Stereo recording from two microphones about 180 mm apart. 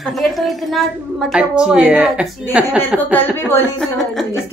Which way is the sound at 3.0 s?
10° left (ahead or behind).